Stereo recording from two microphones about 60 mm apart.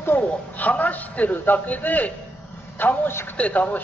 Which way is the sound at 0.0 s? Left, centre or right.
Left.